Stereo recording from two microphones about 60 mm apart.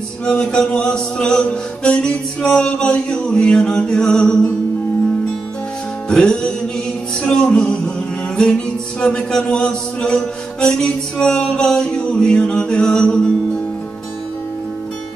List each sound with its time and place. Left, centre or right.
0.2 s music: centre
6.0 s music: centre